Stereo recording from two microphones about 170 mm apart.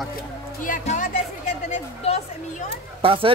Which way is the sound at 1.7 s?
40° left (ahead or behind).